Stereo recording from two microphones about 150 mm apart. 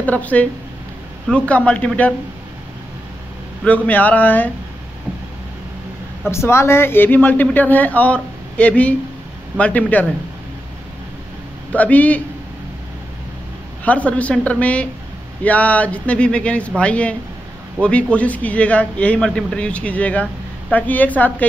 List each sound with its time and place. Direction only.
0.0 s speech: 10° left (ahead or behind)
3.6 s speech: 10° left (ahead or behind)
6.3 s speech: 20° left (ahead or behind)
11.7 s speech: 10° left (ahead or behind)
13.8 s speech: 10° left (ahead or behind)